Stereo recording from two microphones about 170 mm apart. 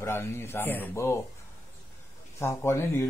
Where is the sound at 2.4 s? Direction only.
15° left (ahead or behind).